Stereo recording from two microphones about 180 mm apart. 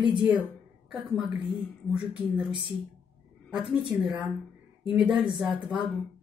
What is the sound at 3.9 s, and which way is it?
A woman's voice, centre (ahead or behind).